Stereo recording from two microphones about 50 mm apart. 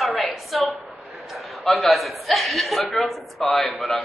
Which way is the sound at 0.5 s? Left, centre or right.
Centre.